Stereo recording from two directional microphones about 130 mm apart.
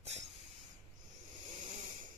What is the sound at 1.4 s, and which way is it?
Wheeze, 55° right (ahead or behind).